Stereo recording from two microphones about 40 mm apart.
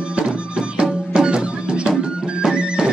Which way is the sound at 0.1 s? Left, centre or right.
Right.